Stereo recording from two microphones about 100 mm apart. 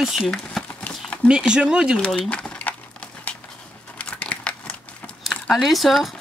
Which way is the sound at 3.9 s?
15° left (ahead or behind).